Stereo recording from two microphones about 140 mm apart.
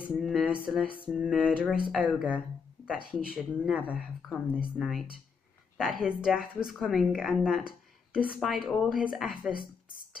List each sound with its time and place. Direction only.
0.1 s a woman's voice: centre (ahead or behind)
3.1 s a woman's voice: 5° right (ahead or behind)
9.5 s speech: 90° left